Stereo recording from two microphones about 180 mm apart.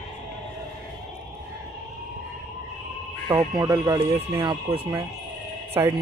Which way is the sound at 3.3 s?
20° right (ahead or behind).